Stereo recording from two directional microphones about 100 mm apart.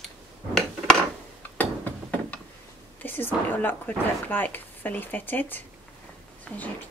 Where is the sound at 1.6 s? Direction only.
15° left (ahead or behind).